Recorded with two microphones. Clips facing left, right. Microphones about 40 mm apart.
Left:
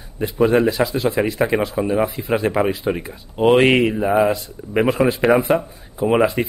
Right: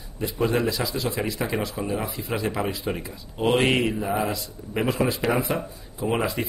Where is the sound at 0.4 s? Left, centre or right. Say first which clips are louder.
Left 8 dB; left.